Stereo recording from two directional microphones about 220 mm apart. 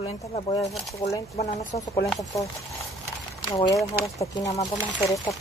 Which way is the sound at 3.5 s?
15° left (ahead or behind).